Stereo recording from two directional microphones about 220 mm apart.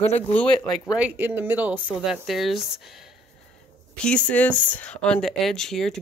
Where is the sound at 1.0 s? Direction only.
10° right (ahead or behind).